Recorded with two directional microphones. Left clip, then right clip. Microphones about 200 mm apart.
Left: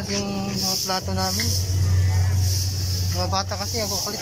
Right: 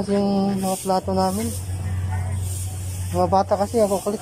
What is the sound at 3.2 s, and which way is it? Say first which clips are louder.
Speech: right 9 dB; 35° right (ahead or behind).